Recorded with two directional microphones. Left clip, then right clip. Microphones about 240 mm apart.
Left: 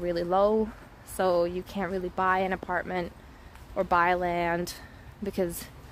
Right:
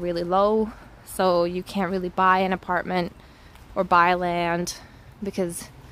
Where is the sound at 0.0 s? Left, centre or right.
Centre.